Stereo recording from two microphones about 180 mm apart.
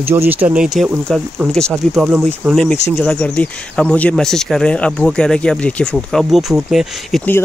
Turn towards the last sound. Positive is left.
turn(degrees=0)  # may be behind; listen again after turning